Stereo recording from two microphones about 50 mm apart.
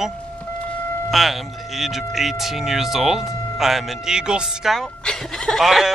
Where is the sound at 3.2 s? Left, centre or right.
Left.